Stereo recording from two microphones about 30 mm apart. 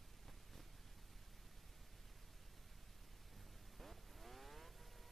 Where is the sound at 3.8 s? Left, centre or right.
Centre.